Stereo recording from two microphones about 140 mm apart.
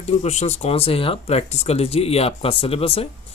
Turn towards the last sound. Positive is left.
turn(degrees=45)  # may be behind; listen again after turning